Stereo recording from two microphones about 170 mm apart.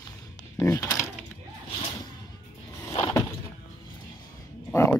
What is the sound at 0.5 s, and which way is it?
Speech, 15° left (ahead or behind).